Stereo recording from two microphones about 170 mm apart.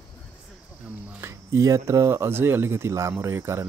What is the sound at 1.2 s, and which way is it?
Speech, 20° right (ahead or behind).